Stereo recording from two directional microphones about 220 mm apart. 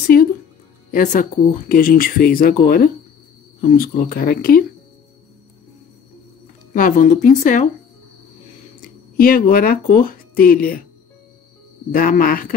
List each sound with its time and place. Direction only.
0.1 s music: 40° left (ahead or behind)
0.9 s speech: 35° left (ahead or behind)
6.7 s speech: 35° left (ahead or behind)
9.1 s speech: 40° left (ahead or behind)
11.9 s speech: 40° left (ahead or behind)